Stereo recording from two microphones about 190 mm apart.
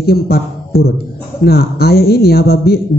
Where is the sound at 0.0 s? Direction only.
55° left (ahead or behind).